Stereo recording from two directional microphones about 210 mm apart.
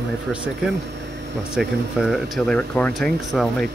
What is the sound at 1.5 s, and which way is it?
Speech, centre (ahead or behind).